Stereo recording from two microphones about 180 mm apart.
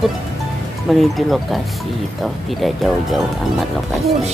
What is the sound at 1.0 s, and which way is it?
Speech, centre (ahead or behind).